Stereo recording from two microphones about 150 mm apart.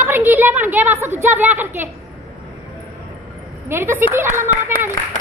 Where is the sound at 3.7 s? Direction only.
15° right (ahead or behind).